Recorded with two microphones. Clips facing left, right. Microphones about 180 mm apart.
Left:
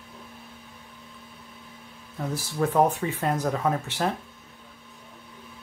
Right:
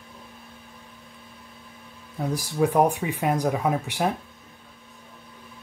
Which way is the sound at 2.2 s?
15° right (ahead or behind).